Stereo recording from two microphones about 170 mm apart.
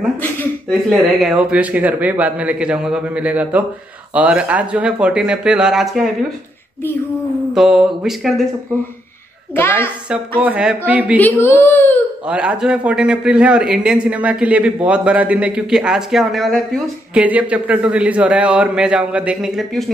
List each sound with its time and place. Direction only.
0.2 s a man's voice: 5° left (ahead or behind)
7.5 s speech: 5° right (ahead or behind)
9.6 s speech: 10° left (ahead or behind)
10.4 s a man's voice: 5° right (ahead or behind)
11.1 s speech: 10° left (ahead or behind)
12.3 s a man's voice: 5° right (ahead or behind)